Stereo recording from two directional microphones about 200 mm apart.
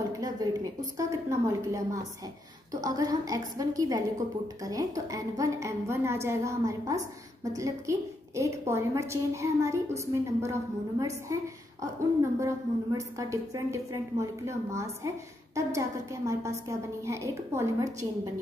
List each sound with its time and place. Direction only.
0.1 s a woman's voice: 20° right (ahead or behind)